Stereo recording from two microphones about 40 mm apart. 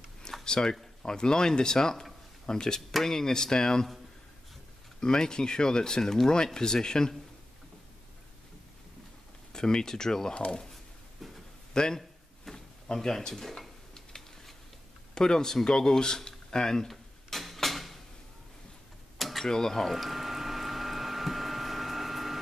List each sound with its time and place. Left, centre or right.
0.5 s speech: centre
5.0 s speech: centre
9.5 s speech: centre
11.7 s speech: centre
12.5 s drawer open or close: centre
12.9 s dishes: centre
15.1 s speech: centre
16.9 s a sound: centre
19.1 s a sound: centre
19.4 s speech: centre
19.9 s a sound: centre